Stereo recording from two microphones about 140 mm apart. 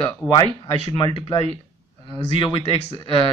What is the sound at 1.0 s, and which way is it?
Speech, 35° left (ahead or behind).